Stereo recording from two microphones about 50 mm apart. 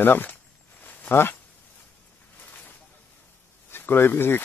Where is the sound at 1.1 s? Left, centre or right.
Left.